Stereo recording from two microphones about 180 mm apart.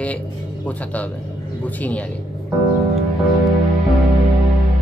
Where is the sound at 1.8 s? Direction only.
10° left (ahead or behind).